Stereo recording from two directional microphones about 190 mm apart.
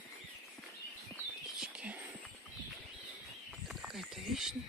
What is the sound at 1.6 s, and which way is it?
Whispering, 5° right (ahead or behind).